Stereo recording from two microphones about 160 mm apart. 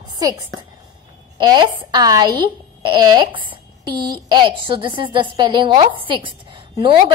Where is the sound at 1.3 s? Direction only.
25° right (ahead or behind).